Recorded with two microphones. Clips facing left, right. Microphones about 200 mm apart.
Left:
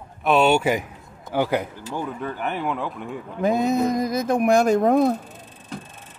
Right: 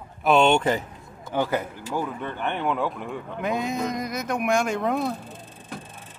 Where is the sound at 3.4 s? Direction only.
40° left (ahead or behind).